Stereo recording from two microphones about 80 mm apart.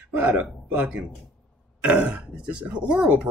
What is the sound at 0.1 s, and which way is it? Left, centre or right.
Speech, right.